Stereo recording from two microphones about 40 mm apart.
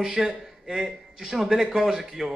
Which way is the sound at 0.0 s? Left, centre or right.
Centre.